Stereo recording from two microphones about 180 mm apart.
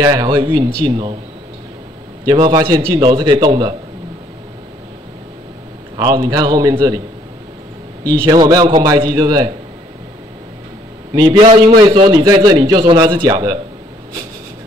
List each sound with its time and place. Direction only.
0.0 s a man's voice: 20° right (ahead or behind)
2.2 s a man's voice: 20° right (ahead or behind)
5.9 s a man's voice: 20° right (ahead or behind)
8.3 s a man's voice: 20° right (ahead or behind)
11.1 s a man's voice: 25° right (ahead or behind)